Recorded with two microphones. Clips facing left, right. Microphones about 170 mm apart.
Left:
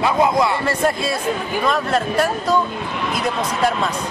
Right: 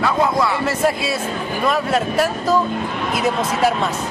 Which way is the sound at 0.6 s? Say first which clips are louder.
Right 1 dB; 5° right (ahead or behind).